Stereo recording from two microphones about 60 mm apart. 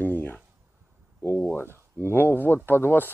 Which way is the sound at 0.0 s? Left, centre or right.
Left.